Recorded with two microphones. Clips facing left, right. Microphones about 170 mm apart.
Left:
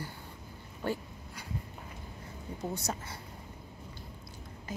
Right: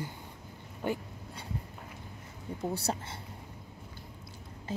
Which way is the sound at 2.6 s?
30° right (ahead or behind).